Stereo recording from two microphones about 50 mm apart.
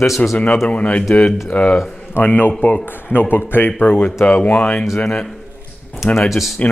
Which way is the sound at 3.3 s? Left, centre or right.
Left.